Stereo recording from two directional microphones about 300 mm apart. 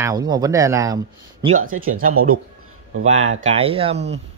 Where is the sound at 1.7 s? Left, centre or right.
Right.